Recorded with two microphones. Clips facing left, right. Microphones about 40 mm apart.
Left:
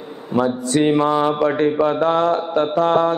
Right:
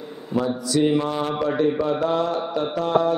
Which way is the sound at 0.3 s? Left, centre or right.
Left.